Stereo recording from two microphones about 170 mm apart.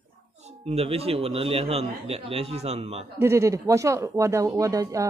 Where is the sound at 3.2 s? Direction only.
15° right (ahead or behind).